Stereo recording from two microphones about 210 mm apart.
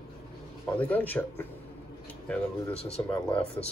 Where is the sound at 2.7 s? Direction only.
30° left (ahead or behind).